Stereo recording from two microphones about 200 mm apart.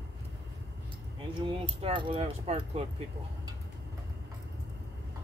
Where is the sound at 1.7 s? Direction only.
25° right (ahead or behind).